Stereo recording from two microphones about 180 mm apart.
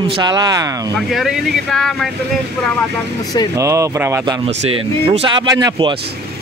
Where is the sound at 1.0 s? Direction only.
Centre (ahead or behind).